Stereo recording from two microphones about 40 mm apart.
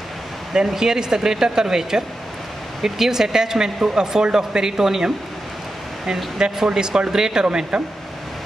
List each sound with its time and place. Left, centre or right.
0.7 s speech: centre
6.3 s speech: centre